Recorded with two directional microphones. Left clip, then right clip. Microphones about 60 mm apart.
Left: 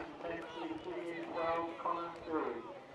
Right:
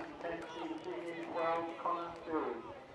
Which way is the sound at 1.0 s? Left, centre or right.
Centre.